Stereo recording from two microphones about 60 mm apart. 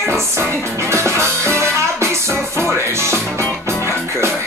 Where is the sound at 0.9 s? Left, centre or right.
Right.